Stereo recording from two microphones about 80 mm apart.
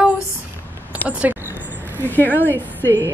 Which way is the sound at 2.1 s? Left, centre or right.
Left.